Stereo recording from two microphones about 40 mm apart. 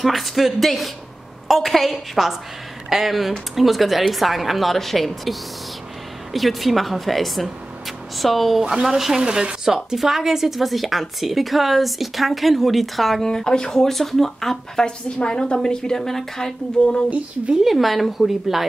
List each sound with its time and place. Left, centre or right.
0.0 s a woman's voice: centre
9.7 s a woman's voice: centre
13.2 s speech: centre
14.9 s speech: left
17.6 s a woman's voice: centre